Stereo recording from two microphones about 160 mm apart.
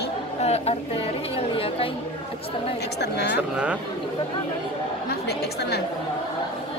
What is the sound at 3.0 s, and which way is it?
Speech, 90° left.